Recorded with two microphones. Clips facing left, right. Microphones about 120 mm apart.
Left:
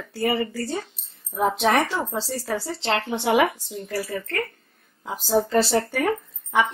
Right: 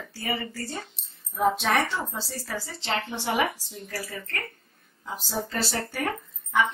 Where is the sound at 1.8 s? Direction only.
70° left (ahead or behind).